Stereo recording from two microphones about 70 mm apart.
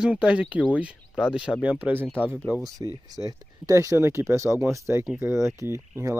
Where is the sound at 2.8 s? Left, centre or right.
Right.